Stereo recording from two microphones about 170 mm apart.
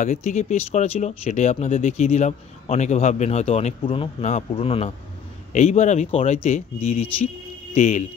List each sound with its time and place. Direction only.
0.0 s speech: 45° left (ahead or behind)